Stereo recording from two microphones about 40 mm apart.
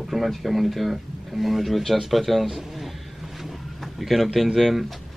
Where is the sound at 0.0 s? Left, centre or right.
Centre.